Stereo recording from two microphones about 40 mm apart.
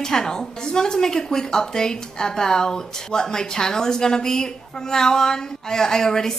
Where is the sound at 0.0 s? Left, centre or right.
Centre.